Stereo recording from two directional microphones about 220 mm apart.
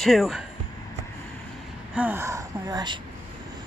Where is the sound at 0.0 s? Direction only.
Centre (ahead or behind).